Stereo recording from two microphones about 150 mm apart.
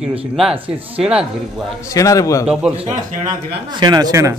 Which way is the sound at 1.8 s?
20° left (ahead or behind).